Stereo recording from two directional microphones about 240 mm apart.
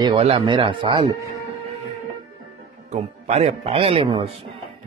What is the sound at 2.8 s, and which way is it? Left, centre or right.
Speech, right.